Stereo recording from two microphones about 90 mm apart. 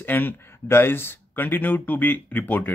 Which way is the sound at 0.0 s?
20° left (ahead or behind).